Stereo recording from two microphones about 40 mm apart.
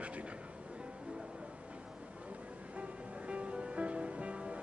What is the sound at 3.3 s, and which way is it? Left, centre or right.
Music, right.